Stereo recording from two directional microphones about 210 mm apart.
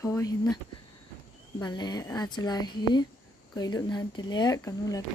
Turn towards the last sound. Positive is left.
turn(degrees=15)  # may be behind; listen again after turning